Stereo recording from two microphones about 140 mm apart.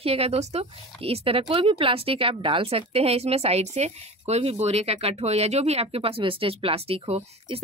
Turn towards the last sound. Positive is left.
turn(degrees=-40)  # may be behind; listen again after turning